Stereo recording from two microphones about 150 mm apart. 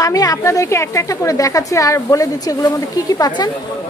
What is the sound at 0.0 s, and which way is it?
A woman's voice, 25° left (ahead or behind).